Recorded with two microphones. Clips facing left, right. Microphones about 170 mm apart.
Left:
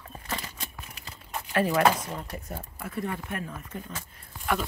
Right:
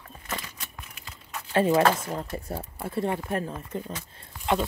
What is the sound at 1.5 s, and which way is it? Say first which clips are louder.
Speech: right 2 dB; 30° right (ahead or behind).